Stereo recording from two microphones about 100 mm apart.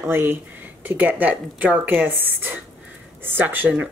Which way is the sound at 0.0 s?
25° right (ahead or behind).